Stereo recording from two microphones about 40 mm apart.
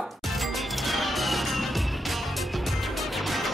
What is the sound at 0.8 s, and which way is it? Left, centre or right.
Music, centre.